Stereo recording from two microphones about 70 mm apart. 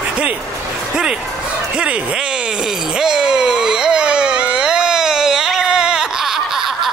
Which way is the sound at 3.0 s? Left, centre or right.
Centre.